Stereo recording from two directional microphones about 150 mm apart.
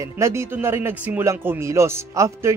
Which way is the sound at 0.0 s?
20° right (ahead or behind).